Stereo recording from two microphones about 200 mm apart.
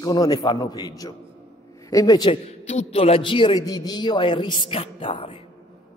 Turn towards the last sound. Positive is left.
turn(degrees=25)  # may be behind; listen again after turning